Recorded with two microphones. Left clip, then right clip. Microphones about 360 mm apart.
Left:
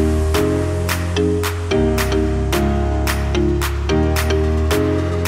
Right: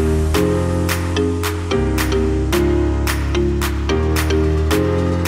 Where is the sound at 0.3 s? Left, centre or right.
Centre.